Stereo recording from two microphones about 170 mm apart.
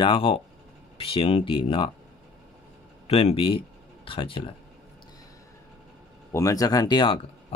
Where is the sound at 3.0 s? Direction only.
35° left (ahead or behind).